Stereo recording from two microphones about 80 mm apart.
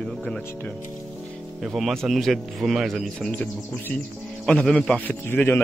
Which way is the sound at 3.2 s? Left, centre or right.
Centre.